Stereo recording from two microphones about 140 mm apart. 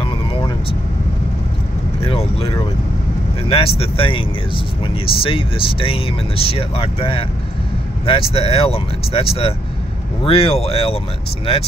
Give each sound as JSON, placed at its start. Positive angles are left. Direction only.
{"t": 0.0, "sound": "vehicle", "side_deg": 40}
{"t": 2.0, "sound": "vehicle", "side_deg": 45}
{"t": 3.4, "sound": "speech", "side_deg": 45}